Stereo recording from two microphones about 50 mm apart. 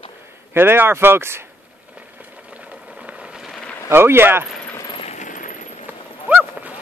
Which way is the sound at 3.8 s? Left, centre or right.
Right.